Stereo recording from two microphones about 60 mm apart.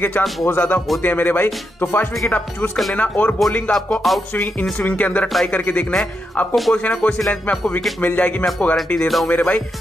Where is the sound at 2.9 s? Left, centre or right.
Left.